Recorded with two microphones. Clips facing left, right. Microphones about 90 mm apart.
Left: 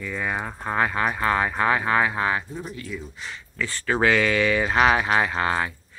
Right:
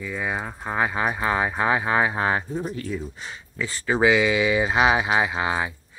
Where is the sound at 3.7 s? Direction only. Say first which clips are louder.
Right 2 dB; 5° right (ahead or behind).